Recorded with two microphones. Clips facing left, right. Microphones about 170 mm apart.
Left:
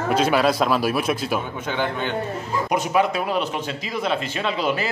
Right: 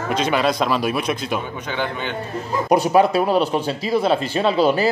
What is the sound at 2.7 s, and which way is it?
Speech, 35° right (ahead or behind).